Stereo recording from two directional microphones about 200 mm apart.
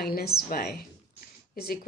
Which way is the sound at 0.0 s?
50° left (ahead or behind).